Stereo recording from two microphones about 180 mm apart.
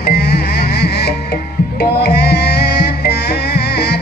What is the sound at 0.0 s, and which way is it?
Music, 65° left (ahead or behind).